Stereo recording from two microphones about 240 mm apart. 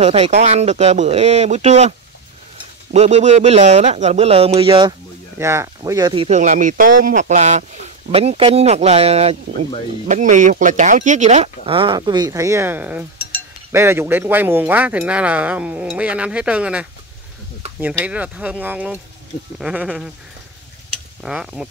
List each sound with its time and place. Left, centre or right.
0.0 s speech: right; by 16.8 s centre
18.0 s speech: centre
21.2 s speech: centre